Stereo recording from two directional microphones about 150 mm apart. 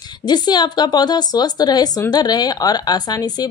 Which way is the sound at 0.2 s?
30° left (ahead or behind).